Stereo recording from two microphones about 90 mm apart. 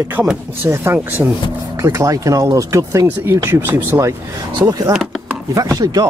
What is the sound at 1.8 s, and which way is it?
Speech, 35° right (ahead or behind).